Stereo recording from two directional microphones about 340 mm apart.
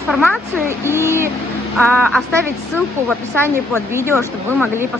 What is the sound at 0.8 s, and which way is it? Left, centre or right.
Speech, centre.